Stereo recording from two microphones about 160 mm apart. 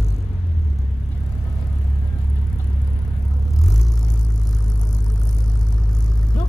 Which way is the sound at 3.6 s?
Centre (ahead or behind).